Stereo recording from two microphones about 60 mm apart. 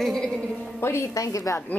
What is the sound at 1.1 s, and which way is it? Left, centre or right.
Speech, left.